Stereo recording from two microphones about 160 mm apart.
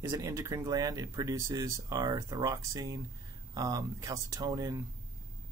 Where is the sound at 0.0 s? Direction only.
20° right (ahead or behind).